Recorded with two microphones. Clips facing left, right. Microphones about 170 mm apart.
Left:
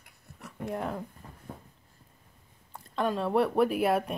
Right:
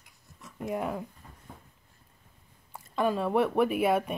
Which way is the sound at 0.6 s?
5° right (ahead or behind).